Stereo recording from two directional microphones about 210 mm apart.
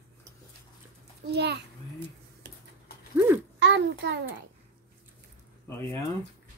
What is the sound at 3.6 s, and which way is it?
Speech, 55° right (ahead or behind).